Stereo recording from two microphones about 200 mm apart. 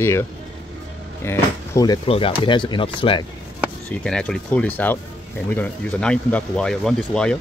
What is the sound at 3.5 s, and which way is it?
Speech, 5° left (ahead or behind).